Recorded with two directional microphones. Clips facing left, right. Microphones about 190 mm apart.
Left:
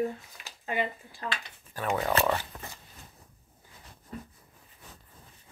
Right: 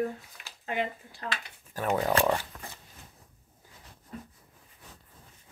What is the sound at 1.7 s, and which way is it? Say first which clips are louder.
Speech: right 2 dB; 35° right (ahead or behind).